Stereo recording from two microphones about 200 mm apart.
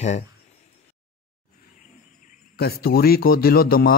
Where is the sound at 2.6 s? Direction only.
50° left (ahead or behind).